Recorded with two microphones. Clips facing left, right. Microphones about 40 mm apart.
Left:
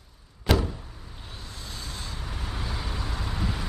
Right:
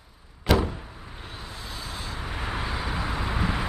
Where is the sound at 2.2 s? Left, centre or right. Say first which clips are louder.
Right 7 dB; right.